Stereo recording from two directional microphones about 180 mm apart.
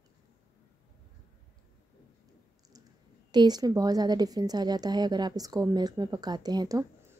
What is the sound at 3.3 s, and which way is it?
A woman's voice, 25° right (ahead or behind).